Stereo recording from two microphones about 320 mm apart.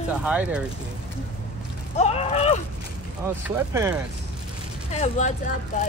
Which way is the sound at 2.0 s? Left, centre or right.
Centre.